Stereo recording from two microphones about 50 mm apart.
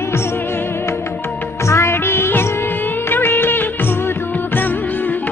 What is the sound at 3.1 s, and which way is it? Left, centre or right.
Music of bollywood, left.